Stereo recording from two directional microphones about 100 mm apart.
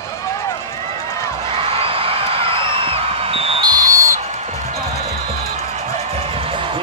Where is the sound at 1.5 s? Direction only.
70° right (ahead or behind).